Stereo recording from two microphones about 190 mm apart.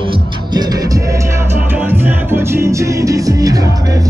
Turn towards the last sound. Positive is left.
turn(degrees=-15)  # may be behind; listen again after turning